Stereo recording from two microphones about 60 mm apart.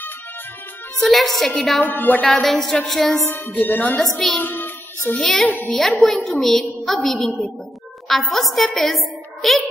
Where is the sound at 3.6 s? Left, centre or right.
Left.